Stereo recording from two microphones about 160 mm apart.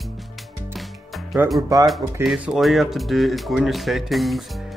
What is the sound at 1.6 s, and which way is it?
Speech, 20° right (ahead or behind).